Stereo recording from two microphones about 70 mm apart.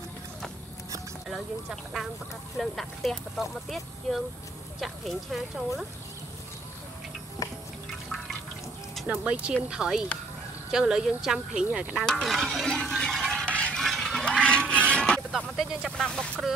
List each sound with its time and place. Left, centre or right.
1.3 s speech: centre
9.1 s speech: centre
12.1 s stir: centre
13.5 s a sound: centre
13.7 s a sound: centre
14.9 s music: centre
15.3 s vehicle: centre
16.0 s speech: centre